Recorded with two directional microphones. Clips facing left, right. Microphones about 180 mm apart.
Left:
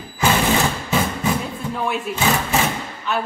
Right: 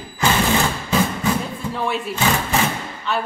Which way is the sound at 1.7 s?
Centre (ahead or behind).